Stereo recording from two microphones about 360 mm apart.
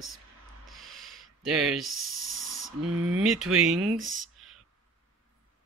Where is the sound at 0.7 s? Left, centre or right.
Centre.